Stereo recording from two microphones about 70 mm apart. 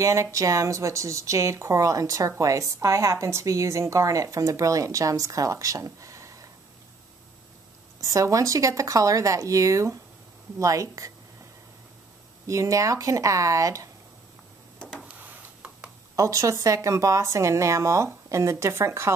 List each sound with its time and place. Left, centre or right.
0.0 s speech: right
8.0 s speech: right
12.4 s speech: right
14.8 s a sound: centre
15.1 s tick-tock: right
16.2 s speech: right